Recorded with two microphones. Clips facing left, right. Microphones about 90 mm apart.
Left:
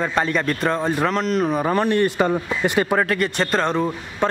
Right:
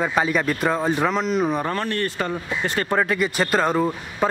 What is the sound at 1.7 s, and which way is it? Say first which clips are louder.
Speech: left 6 dB; 15° left (ahead or behind).